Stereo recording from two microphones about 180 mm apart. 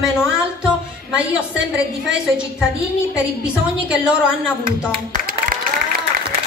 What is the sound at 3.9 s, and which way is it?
Speech, 5° right (ahead or behind).